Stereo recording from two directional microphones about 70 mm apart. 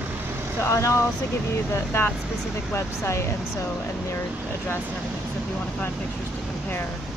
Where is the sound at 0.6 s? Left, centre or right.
Left.